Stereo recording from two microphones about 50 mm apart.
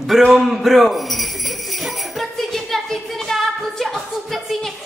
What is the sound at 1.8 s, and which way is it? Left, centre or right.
Jingle bell, centre.